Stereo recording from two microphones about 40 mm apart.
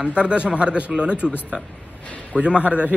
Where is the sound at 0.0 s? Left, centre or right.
Right.